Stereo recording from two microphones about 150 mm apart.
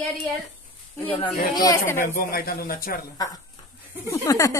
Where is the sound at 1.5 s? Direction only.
30° left (ahead or behind).